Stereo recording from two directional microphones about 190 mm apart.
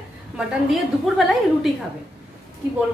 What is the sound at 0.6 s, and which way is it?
A woman's voice, centre (ahead or behind).